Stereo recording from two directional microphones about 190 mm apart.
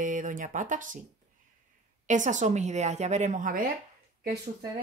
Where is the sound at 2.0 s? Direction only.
40° right (ahead or behind).